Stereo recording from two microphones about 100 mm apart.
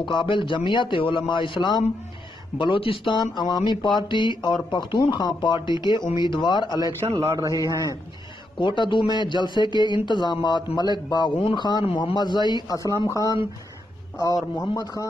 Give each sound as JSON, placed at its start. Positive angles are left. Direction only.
{"t": 0.0, "sound": "a man's voice", "side_deg": 50}
{"t": 2.6, "sound": "a man's voice", "side_deg": 65}
{"t": 3.2, "sound": "speech", "side_deg": 45}
{"t": 7.2, "sound": "a man's voice", "side_deg": -35}
{"t": 7.6, "sound": "speech", "side_deg": 35}
{"t": 8.5, "sound": "speech", "side_deg": 50}